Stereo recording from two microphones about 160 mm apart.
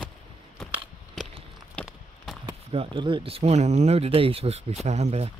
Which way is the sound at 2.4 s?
30° right (ahead or behind).